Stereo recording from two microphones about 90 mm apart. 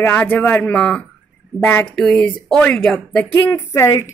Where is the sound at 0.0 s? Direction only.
20° left (ahead or behind); by 3.3 s 5° left (ahead or behind).